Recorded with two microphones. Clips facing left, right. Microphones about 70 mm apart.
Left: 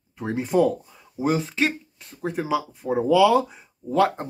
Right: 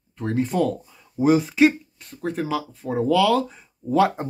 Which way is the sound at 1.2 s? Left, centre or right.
Centre.